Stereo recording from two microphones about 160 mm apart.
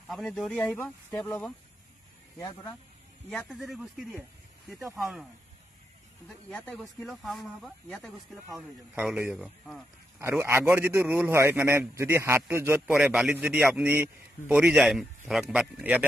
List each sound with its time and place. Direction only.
0.1 s speech: centre (ahead or behind)
2.3 s speech: 20° left (ahead or behind)
3.3 s speech: 5° left (ahead or behind)
6.2 s a man's voice: 5° left (ahead or behind)